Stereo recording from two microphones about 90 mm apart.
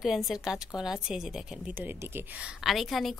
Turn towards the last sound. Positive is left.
turn(degrees=0)  # may be behind; listen again after turning